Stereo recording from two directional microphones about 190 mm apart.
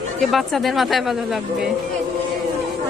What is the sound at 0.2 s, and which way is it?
Speech, centre (ahead or behind).